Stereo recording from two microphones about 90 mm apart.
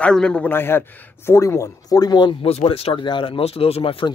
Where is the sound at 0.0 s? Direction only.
10° left (ahead or behind).